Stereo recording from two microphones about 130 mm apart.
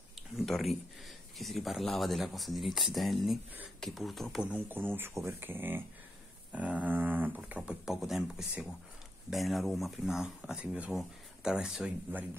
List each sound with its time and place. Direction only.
0.5 s speech: centre (ahead or behind)
4.5 s speech: 15° right (ahead or behind)